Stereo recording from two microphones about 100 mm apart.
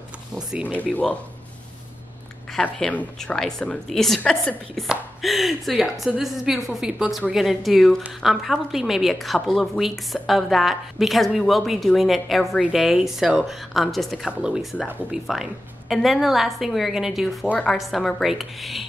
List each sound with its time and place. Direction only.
0.7 s speech: 15° left (ahead or behind)
2.6 s a woman's voice: 15° left (ahead or behind)
4.7 s a woman's voice: centre (ahead or behind)